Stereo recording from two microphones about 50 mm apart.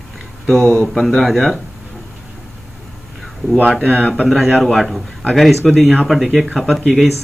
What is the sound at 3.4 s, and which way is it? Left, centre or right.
Speech, right.